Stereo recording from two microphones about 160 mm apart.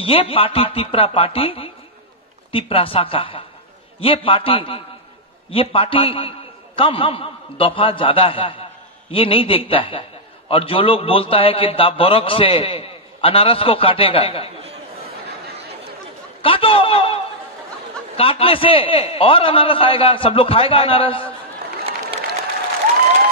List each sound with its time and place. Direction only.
0.0 s a man's voice: 35° left (ahead or behind)
16.3 s a man's voice: 35° left (ahead or behind)